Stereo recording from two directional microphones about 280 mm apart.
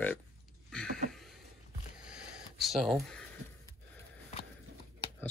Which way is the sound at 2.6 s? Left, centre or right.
Centre.